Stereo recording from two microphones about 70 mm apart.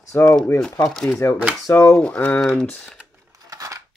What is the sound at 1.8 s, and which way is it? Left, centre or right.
Speech, left.